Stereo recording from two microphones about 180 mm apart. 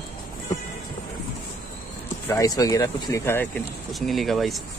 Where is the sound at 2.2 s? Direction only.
20° left (ahead or behind).